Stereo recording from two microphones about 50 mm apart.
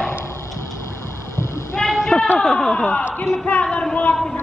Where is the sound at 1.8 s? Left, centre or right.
Centre.